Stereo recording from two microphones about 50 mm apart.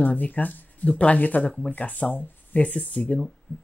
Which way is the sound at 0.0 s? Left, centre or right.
Left.